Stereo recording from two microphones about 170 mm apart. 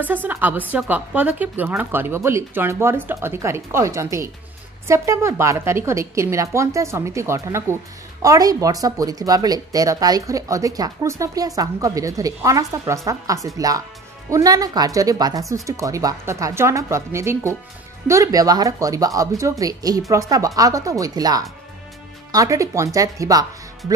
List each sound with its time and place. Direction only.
0.0 s a woman's voice: 10° right (ahead or behind)